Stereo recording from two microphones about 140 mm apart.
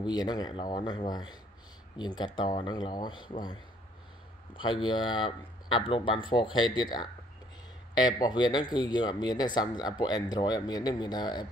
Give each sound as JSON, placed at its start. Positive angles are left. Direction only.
{"t": 0.0, "sound": "speech", "side_deg": 30}
{"t": 4.6, "sound": "speech", "side_deg": 35}